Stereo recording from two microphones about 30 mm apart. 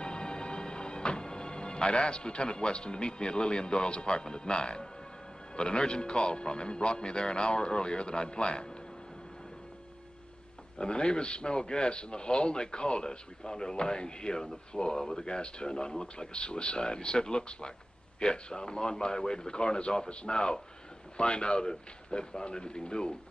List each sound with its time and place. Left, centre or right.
0.0 s a man's voice: left
10.8 s a man's voice: left